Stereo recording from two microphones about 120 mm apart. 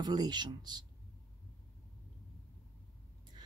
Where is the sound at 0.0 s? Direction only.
35° right (ahead or behind).